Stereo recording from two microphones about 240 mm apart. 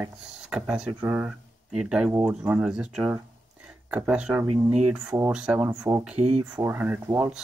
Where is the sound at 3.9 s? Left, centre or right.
Centre.